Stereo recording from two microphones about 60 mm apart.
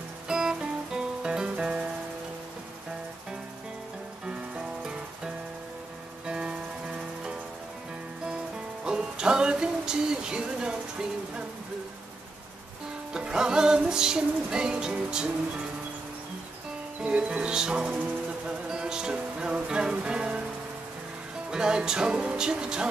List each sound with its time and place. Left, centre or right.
0.3 s music: centre
4.3 s music: centre
8.8 s music: centre
13.1 s music: centre
17.0 s music: right
21.5 s music: centre